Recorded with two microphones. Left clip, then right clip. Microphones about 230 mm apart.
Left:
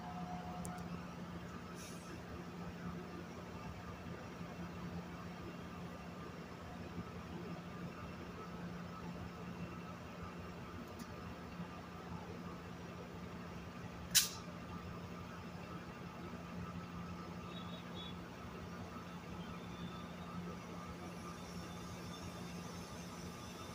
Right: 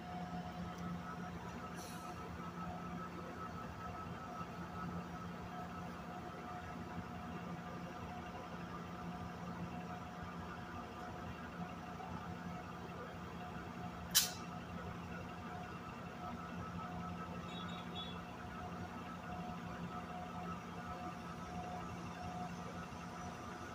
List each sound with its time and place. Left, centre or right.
14.1 s vehicle: centre